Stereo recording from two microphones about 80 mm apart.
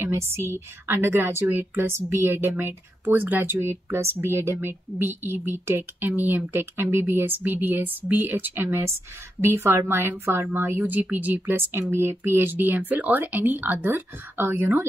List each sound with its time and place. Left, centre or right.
0.0 s a woman's voice: right